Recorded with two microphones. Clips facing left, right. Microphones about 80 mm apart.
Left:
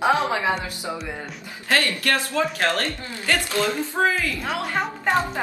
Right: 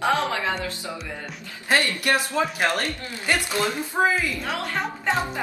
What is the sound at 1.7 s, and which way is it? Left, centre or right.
Speech, centre.